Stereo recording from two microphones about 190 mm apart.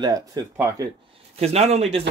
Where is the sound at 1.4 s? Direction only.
35° right (ahead or behind).